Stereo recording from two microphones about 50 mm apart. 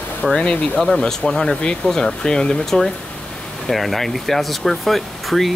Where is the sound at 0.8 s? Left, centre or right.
Centre.